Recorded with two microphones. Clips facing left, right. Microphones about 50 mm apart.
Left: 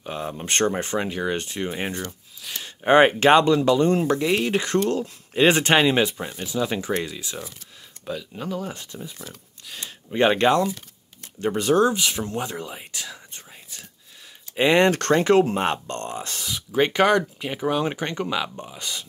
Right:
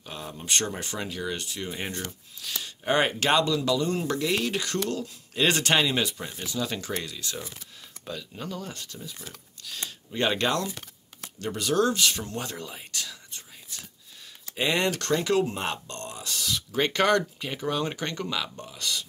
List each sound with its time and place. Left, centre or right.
0.0 s speech: left
1.8 s speech: left
2.6 s speech: left
8.0 s speech: centre; by 11.8 s left
11.8 s speech: centre; by 16.4 s left
16.4 s speech: centre